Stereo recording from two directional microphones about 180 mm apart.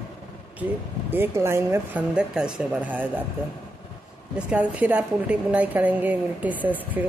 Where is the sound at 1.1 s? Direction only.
15° right (ahead or behind).